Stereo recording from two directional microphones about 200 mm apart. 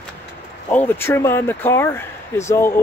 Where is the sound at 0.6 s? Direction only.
10° left (ahead or behind).